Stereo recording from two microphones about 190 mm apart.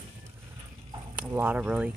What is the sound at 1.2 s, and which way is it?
Speech, 10° right (ahead or behind).